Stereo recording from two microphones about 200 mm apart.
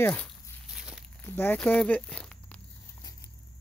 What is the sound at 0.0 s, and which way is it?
Speech, 10° left (ahead or behind).